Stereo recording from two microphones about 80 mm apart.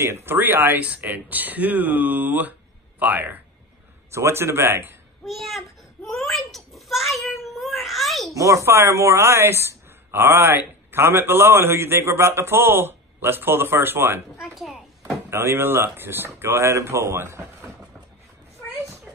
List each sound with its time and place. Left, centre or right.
0.0 s speech: right
4.1 s speech: right
5.2 s a sound: centre
8.4 s speech: right
14.4 s speech: centre
15.2 s speech: right